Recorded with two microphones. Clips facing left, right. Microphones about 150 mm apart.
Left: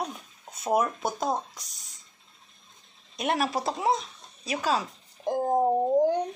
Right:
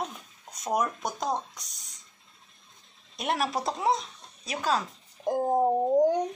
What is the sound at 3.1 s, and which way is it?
Speech, centre (ahead or behind).